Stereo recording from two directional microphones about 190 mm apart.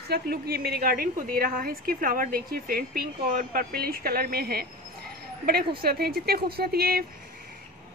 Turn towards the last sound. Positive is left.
turn(degrees=-55)  # may be behind; listen again after turning